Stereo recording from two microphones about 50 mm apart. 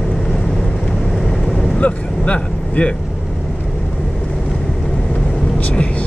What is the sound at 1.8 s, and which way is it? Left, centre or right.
Vehicle, left.